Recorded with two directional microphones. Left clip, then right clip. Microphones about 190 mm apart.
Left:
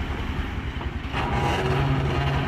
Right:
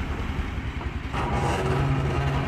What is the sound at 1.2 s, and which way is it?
Music, 5° left (ahead or behind).